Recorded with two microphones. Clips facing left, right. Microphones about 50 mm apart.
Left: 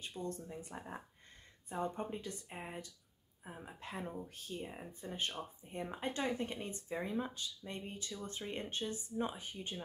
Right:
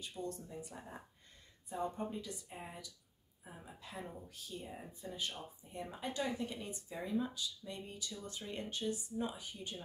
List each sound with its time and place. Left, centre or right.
0.3 s speech: left